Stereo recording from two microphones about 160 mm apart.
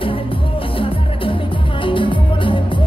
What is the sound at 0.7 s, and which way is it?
Music, 35° left (ahead or behind).